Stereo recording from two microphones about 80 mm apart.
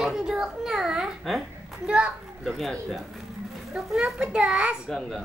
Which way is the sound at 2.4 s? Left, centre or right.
Centre.